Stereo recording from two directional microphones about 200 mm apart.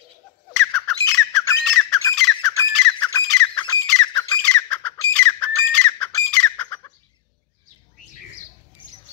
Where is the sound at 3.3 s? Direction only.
5° left (ahead or behind).